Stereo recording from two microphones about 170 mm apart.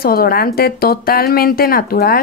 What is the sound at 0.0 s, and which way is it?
Speech, 60° left (ahead or behind).